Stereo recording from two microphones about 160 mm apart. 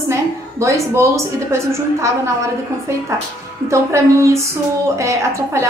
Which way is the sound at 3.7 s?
20° right (ahead or behind).